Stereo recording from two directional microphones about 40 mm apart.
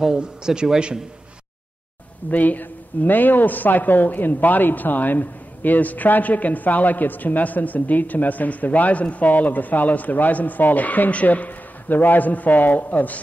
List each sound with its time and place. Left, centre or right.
0.2 s a man's voice: centre
2.3 s speech: left